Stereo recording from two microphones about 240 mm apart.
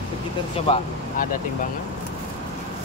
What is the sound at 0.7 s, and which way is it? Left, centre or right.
Speech, left.